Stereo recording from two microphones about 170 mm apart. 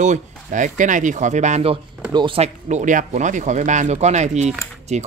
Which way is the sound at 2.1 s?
30° right (ahead or behind).